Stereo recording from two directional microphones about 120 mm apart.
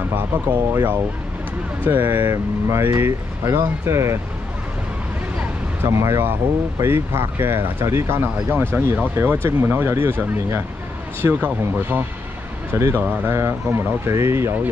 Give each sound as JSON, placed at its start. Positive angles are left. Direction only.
{"t": 0.1, "sound": "speech", "side_deg": -15}
{"t": 5.9, "sound": "speech", "side_deg": -20}
{"t": 11.1, "sound": "speech", "side_deg": -15}